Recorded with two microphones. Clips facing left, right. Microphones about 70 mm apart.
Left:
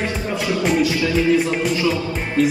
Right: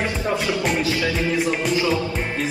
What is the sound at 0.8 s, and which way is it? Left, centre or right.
Music, right.